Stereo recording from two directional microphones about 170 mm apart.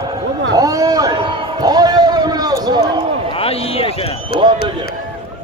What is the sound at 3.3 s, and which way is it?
Speech, 35° left (ahead or behind).